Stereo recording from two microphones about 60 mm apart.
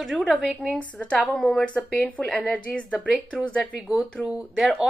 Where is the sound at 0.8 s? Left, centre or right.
Left.